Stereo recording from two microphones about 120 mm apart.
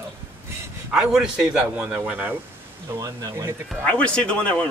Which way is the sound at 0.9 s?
5° right (ahead or behind).